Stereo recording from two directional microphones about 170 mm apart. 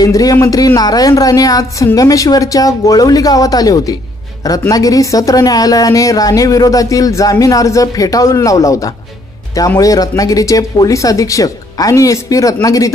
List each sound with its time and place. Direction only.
0.0 s a woman's voice: 20° left (ahead or behind)